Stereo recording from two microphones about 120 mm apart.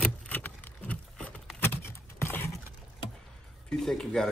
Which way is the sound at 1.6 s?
20° left (ahead or behind).